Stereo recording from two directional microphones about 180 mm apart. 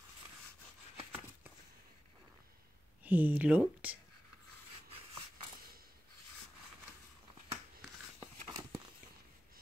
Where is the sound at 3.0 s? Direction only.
10° right (ahead or behind).